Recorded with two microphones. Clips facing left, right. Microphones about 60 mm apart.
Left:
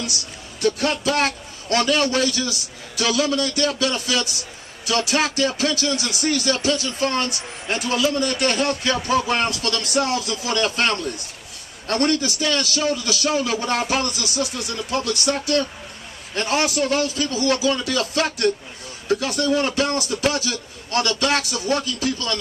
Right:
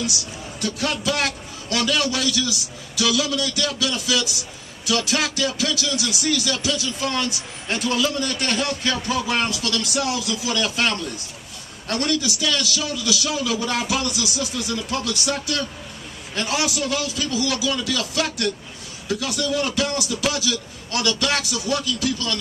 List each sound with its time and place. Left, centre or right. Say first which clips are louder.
0.0 s a man's voice: right 2 dB; left